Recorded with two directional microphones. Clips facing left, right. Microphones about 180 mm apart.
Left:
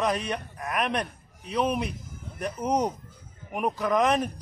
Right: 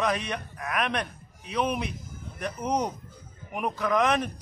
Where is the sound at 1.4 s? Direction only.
Centre (ahead or behind).